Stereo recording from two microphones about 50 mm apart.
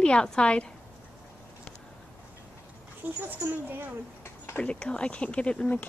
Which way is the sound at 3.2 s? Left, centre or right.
Right.